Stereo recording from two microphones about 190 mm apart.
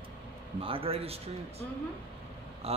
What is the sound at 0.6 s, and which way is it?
A man's voice, 30° right (ahead or behind).